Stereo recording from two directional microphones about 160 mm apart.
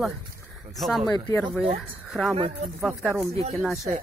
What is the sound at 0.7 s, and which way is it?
Speech, centre (ahead or behind).